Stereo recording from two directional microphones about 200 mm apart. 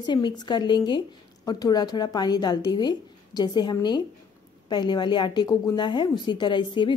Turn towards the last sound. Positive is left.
turn(degrees=25)  # may be behind; listen again after turning